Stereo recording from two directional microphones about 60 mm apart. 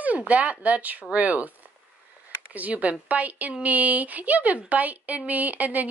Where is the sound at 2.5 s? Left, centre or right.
Right.